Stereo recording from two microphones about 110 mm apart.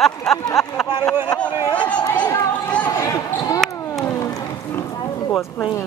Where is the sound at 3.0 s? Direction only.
30° left (ahead or behind).